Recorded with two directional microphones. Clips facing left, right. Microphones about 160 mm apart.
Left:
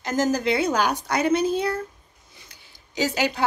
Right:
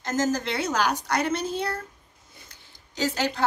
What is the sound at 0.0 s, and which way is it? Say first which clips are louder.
Speech: left 3 dB; 10° left (ahead or behind).